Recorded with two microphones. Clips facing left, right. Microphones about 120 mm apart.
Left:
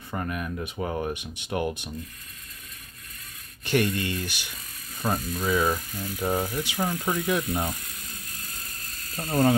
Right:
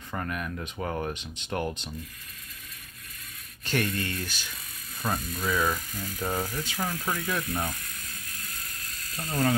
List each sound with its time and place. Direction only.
0.1 s speech: 15° left (ahead or behind)
3.6 s speech: 15° left (ahead or behind)
5.0 s speech: 5° left (ahead or behind); by 7.7 s 25° left (ahead or behind)
9.1 s speech: 35° left (ahead or behind)